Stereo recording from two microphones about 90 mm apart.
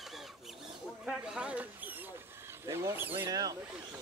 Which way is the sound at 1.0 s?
10° right (ahead or behind).